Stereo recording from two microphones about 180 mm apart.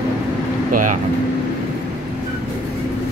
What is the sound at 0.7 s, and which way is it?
Speech, 50° right (ahead or behind).